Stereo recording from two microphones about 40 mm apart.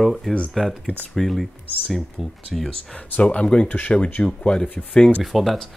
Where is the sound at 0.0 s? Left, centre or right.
Centre.